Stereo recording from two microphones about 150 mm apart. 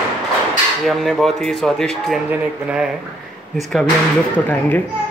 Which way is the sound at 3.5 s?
5° left (ahead or behind).